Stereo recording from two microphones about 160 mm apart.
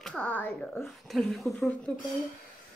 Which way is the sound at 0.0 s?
5° left (ahead or behind).